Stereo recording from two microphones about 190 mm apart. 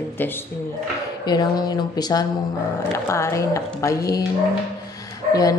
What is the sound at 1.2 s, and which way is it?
Speech, 20° left (ahead or behind).